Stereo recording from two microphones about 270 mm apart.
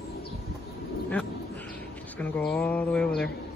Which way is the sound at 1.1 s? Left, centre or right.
Centre.